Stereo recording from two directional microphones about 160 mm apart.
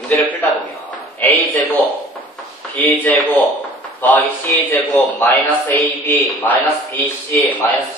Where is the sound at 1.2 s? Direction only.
10° left (ahead or behind).